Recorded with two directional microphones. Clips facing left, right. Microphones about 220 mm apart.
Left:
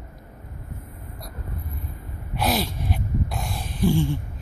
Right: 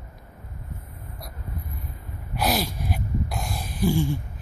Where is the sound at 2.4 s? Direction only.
5° right (ahead or behind).